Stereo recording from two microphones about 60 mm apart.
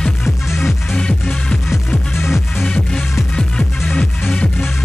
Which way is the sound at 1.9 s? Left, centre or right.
Left.